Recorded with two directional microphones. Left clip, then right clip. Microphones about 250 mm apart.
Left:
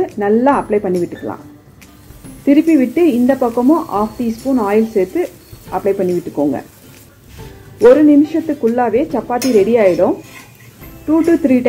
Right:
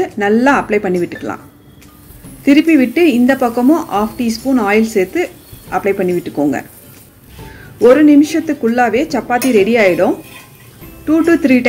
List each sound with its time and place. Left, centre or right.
0.0 s speech: right
2.4 s speech: right
7.8 s speech: right